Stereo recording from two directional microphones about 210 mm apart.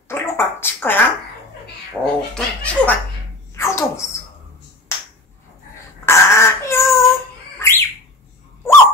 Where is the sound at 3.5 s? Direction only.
15° left (ahead or behind).